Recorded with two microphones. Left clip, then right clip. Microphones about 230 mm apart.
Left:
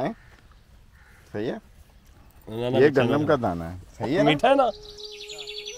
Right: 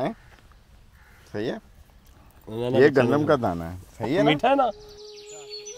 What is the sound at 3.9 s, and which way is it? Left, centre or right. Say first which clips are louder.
Speech: even; centre.